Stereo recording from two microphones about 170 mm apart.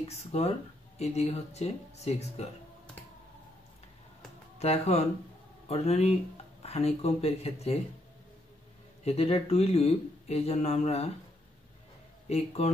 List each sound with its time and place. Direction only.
0.0 s speech: 40° left (ahead or behind)
4.6 s speech: 40° left (ahead or behind)
9.0 s speech: 35° left (ahead or behind)
12.3 s speech: 40° left (ahead or behind)